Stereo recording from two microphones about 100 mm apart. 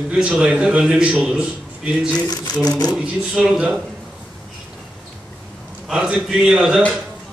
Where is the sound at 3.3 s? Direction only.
10° right (ahead or behind).